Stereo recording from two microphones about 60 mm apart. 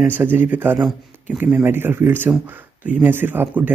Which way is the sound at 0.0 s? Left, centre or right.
Right.